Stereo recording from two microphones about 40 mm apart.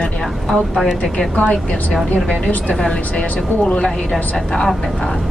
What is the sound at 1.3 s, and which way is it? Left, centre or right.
A woman's voice, left.